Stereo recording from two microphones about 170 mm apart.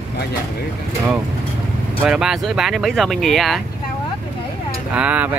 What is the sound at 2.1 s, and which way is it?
Speech, centre (ahead or behind).